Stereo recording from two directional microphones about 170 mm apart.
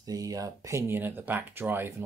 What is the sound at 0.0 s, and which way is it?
Speech, 20° right (ahead or behind).